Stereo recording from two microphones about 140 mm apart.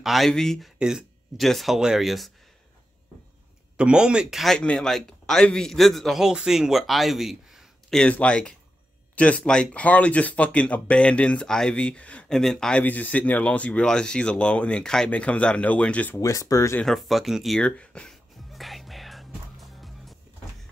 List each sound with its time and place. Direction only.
0.0 s speech: centre (ahead or behind)
3.7 s speech: 5° right (ahead or behind); by 16.2 s 10° left (ahead or behind)
16.2 s speech: 25° left (ahead or behind)
16.8 s music: centre (ahead or behind)